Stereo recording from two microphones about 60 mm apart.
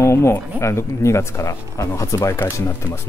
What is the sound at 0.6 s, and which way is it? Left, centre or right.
Speech, left.